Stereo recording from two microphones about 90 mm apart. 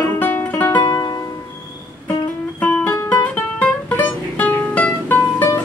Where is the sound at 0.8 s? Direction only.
50° left (ahead or behind).